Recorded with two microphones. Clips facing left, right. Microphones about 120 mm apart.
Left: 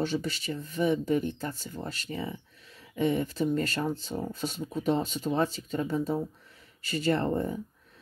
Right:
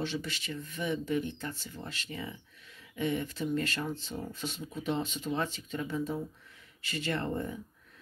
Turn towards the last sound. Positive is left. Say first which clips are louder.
# left 6 dB
turn(degrees=35)  # may be behind; listen again after turning